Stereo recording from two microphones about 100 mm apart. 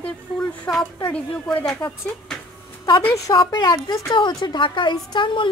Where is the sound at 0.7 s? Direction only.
5° left (ahead or behind).